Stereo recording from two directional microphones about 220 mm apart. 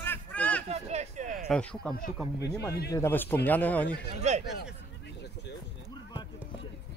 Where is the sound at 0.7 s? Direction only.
30° right (ahead or behind).